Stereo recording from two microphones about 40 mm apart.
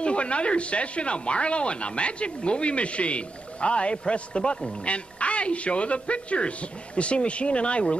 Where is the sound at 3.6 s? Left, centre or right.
Left.